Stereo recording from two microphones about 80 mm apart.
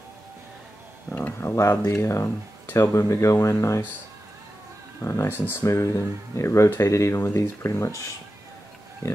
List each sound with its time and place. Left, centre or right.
1.1 s a sound: left
2.0 s speech: left
5.0 s speech: left
9.0 s speech: left